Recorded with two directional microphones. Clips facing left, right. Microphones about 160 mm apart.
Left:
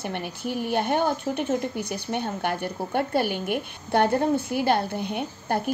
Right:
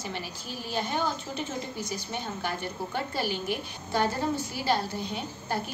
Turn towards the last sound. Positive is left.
turn(degrees=55)  # may be behind; listen again after turning